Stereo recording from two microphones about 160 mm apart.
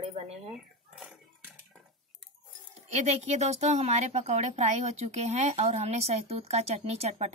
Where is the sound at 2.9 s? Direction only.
45° right (ahead or behind).